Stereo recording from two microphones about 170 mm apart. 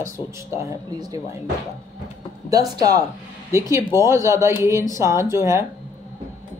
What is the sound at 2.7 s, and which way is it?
A woman's voice, 20° right (ahead or behind).